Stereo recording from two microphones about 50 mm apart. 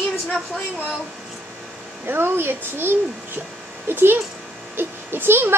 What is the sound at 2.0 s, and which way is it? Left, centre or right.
Speech, right.